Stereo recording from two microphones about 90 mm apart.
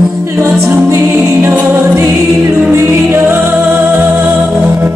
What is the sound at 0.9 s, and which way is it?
Music, 30° right (ahead or behind).